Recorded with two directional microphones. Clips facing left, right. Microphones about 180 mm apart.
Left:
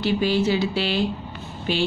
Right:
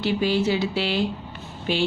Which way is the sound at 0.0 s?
20° right (ahead or behind).